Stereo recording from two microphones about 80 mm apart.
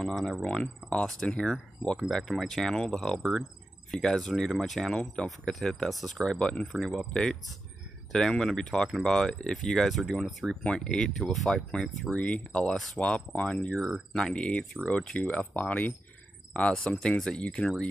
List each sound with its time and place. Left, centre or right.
0.0 s speech: centre
10.6 s speech: centre